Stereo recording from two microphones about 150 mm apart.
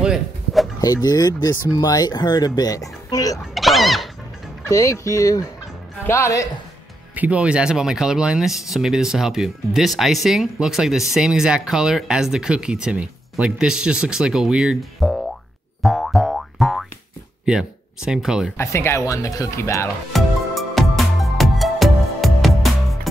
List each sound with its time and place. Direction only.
0.0 s music: centre (ahead or behind)
0.7 s speech: 25° left (ahead or behind)
3.5 s a sound: centre (ahead or behind)
4.6 s speech: 20° left (ahead or behind)
7.2 s speech: 10° right (ahead or behind)
15.8 s boing: centre (ahead or behind)
17.5 s speech: 5° right (ahead or behind)
18.6 s speech: 15° left (ahead or behind)
20.1 s music: centre (ahead or behind)